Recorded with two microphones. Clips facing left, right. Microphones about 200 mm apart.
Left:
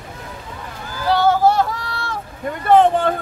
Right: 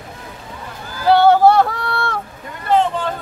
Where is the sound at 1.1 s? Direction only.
60° right (ahead or behind).